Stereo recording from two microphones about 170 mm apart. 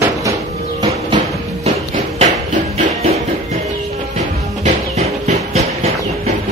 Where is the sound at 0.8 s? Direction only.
35° right (ahead or behind).